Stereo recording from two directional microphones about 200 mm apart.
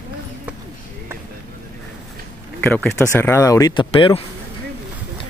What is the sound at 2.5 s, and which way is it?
Speech, 5° left (ahead or behind).